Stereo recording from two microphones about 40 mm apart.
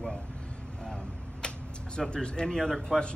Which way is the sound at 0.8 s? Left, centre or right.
Centre.